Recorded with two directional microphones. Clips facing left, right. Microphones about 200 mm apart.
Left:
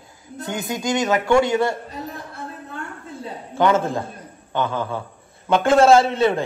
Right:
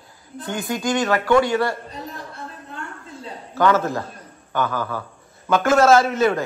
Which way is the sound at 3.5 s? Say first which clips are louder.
Even; 25° left (ahead or behind).